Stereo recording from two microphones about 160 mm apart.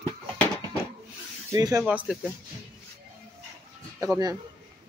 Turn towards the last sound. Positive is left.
turn(degrees=-20)  # may be behind; listen again after turning